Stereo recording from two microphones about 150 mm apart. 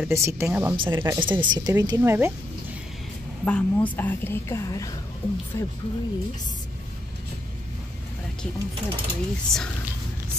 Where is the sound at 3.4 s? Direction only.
10° left (ahead or behind).